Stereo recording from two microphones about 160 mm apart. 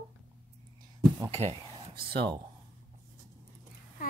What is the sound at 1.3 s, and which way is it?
Speech, 40° right (ahead or behind).